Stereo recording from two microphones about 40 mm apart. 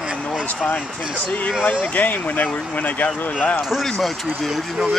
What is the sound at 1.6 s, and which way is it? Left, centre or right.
Speech, left.